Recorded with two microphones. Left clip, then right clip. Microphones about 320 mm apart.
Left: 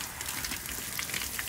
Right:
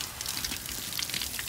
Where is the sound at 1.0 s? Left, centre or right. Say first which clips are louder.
Right 1 dB; centre.